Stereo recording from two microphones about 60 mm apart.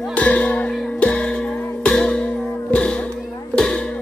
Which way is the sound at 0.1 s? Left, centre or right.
Left.